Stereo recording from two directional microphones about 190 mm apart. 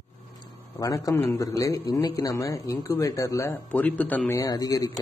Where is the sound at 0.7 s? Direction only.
20° left (ahead or behind).